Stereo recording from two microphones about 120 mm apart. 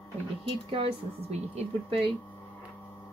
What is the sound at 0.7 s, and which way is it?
Speech, 55° right (ahead or behind).